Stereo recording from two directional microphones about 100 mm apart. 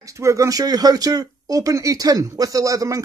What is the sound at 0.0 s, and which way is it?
Speech, 30° right (ahead or behind).